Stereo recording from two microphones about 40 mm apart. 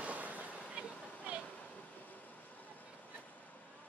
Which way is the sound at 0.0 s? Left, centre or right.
Right.